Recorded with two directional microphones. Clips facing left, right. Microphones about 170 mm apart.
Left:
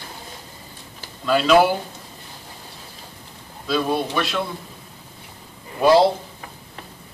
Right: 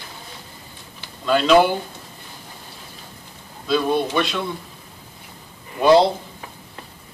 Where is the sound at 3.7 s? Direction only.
Centre (ahead or behind).